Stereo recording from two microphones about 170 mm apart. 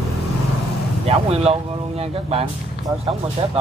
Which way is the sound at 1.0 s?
35° right (ahead or behind).